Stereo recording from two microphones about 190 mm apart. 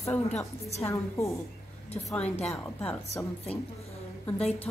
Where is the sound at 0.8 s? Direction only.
15° left (ahead or behind).